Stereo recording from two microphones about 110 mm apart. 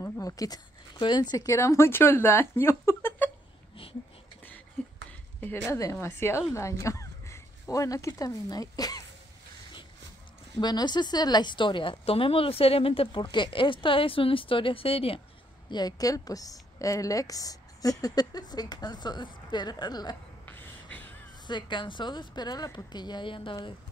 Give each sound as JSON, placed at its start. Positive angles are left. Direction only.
{"t": 0.0, "sound": "a woman's voice", "side_deg": 35}
{"t": 5.7, "sound": "a woman's voice", "side_deg": 25}
{"t": 6.5, "sound": "a sound", "side_deg": 25}
{"t": 8.2, "sound": "speech", "side_deg": 30}
{"t": 10.6, "sound": "a woman's voice", "side_deg": 40}
{"t": 15.7, "sound": "speech", "side_deg": 35}
{"t": 20.4, "sound": "beatboxing", "side_deg": 15}
{"t": 21.5, "sound": "a woman's voice", "side_deg": 45}